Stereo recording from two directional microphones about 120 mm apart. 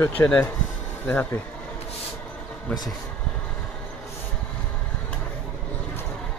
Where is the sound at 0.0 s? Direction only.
15° left (ahead or behind).